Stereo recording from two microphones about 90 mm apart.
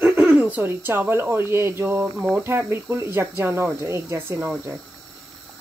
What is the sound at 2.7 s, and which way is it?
Speech, 25° right (ahead or behind).